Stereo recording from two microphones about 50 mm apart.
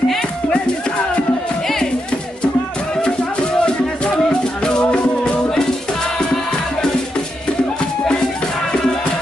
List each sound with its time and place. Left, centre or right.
3.6 s music: centre